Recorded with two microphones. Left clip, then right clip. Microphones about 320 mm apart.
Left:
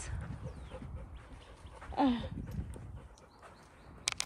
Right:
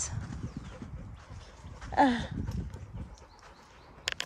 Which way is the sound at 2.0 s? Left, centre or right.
Right.